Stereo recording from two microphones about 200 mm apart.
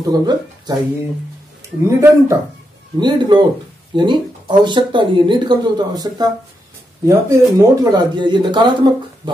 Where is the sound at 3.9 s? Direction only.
25° right (ahead or behind).